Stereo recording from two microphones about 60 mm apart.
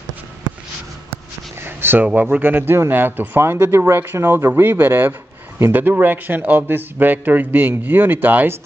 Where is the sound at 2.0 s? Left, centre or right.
Right.